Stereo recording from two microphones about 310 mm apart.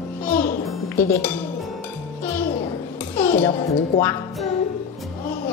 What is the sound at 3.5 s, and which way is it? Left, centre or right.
Speech, centre.